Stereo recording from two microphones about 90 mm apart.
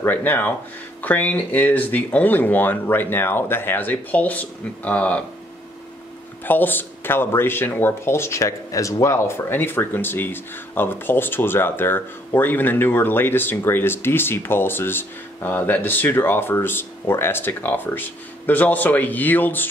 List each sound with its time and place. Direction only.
0.0 s speech: 20° left (ahead or behind)
6.4 s speech: 20° left (ahead or behind)